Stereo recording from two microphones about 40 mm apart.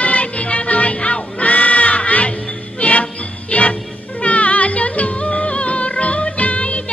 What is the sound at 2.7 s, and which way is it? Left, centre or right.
Jingle bell, left.